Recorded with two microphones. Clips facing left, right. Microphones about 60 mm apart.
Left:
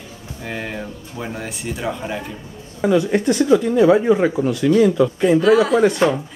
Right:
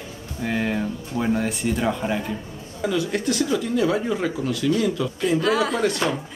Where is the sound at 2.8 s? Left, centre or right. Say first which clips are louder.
Left 7 dB; left.